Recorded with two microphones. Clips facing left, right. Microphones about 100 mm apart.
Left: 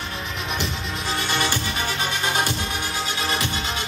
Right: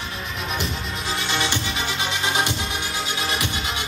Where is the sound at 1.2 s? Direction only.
40° left (ahead or behind).